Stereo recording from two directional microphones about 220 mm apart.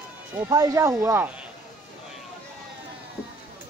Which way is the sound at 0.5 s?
15° right (ahead or behind).